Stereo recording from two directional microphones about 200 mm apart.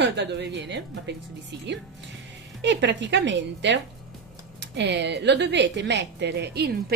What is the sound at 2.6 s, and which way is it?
A woman's voice, 65° right (ahead or behind).